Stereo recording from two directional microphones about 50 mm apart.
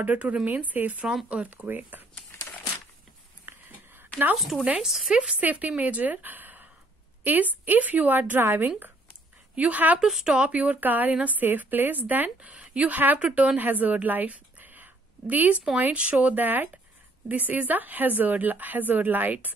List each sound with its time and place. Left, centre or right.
0.0 s speech: right
1.0 s speech: centre
1.4 s speech: right
3.4 s a sound: right
4.4 s speech: centre
5.4 s a woman's voice: right
10.0 s speech: centre
10.3 s speech: right
12.4 s a woman's voice: right